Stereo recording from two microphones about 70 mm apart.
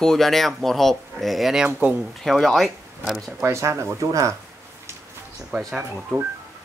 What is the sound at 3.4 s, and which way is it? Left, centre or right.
Speech, right.